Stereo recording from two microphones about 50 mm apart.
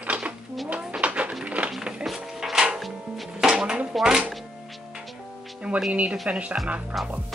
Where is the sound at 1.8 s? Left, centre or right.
Centre.